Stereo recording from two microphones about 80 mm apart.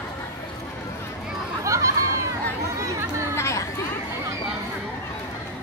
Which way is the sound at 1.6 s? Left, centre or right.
Right.